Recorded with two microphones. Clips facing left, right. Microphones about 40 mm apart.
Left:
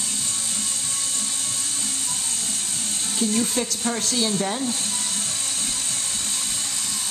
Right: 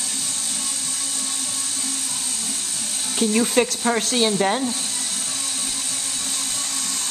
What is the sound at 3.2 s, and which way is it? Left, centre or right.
Speech, right.